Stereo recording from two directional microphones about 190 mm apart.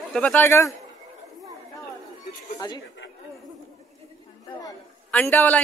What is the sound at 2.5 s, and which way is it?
Speech, 20° left (ahead or behind).